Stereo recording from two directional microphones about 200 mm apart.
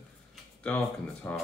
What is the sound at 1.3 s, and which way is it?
Speech, 10° left (ahead or behind).